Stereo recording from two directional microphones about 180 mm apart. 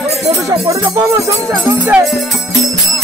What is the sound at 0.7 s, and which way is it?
Speech, 15° right (ahead or behind).